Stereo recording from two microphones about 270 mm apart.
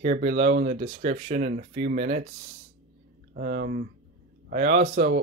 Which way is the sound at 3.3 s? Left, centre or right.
Right.